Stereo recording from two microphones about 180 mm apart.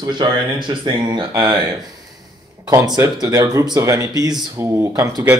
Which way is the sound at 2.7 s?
20° right (ahead or behind).